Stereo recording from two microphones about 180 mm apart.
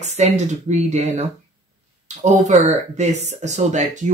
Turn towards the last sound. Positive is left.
turn(degrees=-40)  # may be behind; listen again after turning